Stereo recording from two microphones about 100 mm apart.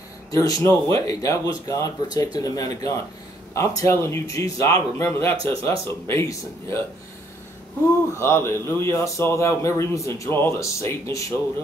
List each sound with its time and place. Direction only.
0.3 s a man's voice: 35° left (ahead or behind)
8.2 s a man's voice: 25° left (ahead or behind)